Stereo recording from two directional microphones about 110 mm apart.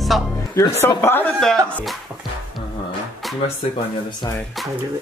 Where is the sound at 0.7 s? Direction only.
20° left (ahead or behind).